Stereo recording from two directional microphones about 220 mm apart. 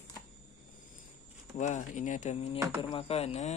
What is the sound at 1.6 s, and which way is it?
Speech, 35° left (ahead or behind).